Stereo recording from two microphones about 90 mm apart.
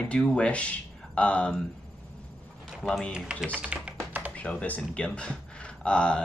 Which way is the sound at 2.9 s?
10° left (ahead or behind).